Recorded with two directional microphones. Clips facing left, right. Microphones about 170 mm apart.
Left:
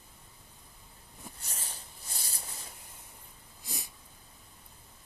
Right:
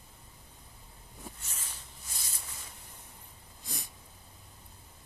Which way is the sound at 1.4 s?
35° left (ahead or behind).